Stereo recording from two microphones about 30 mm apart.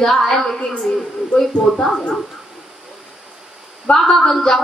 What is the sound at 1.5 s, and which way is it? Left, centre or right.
Speech, left.